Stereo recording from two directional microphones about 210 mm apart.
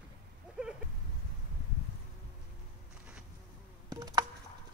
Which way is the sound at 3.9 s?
20° right (ahead or behind).